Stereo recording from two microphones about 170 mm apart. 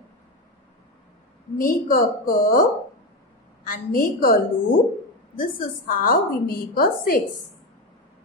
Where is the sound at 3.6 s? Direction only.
55° left (ahead or behind).